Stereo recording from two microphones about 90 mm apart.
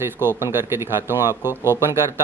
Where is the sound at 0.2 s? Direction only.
25° right (ahead or behind).